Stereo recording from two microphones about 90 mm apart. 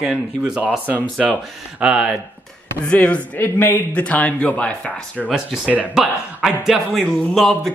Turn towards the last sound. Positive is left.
turn(degrees=0)  # may be behind; listen again after turning